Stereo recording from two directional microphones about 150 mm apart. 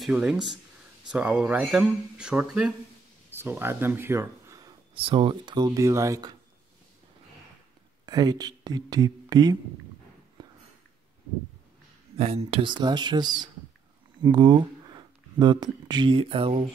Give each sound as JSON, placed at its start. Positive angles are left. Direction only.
{"t": 0.0, "sound": "speech", "side_deg": -5}
{"t": 4.9, "sound": "speech", "side_deg": -35}
{"t": 8.0, "sound": "speech", "side_deg": -25}
{"t": 10.4, "sound": "a sound", "side_deg": -25}
{"t": 12.2, "sound": "speech", "side_deg": -40}